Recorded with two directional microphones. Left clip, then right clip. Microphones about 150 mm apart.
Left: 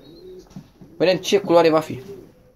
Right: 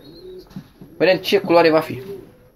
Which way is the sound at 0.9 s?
30° left (ahead or behind).